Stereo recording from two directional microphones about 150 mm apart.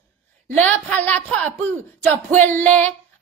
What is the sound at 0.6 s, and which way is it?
A woman's voice, 10° left (ahead or behind).